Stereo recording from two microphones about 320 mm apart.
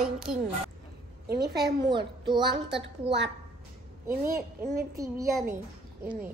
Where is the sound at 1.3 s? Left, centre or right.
Right.